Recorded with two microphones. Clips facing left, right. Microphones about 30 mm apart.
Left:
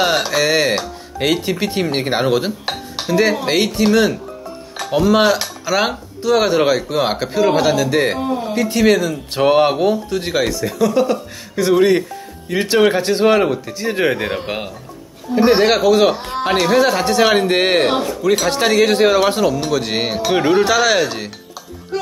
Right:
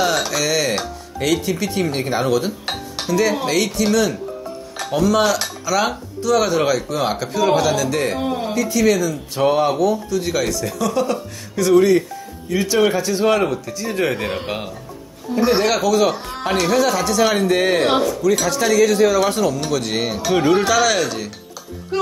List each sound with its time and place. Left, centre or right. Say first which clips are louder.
0.0 s speech: left 3 dB; left
8.5 s speech: left 3 dB; left
10.3 s speech: left 3 dB; left
12.4 s speech: left 3 dB; left
13.2 s speech: left 3 dB; left
14.1 s a man's voice: left 2 dB; centre
15.3 s speech: left 4 dB; left
17.8 s speech: even; left
19.3 s speech: left 3 dB; left